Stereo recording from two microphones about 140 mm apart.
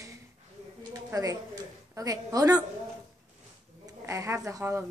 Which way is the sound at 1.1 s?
25° right (ahead or behind).